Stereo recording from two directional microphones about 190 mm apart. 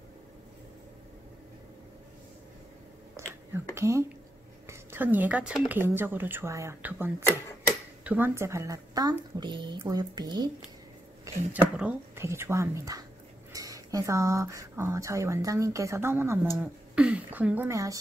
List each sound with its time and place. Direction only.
3.2 s whispering: 15° right (ahead or behind)
3.5 s a sound: 15° right (ahead or behind)
4.6 s speech: 10° right (ahead or behind)
11.5 s speech: 5° right (ahead or behind)